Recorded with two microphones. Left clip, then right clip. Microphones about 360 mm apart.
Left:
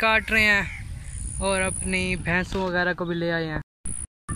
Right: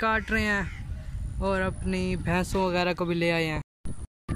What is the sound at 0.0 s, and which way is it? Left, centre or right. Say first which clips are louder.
Speech: left 6 dB; centre.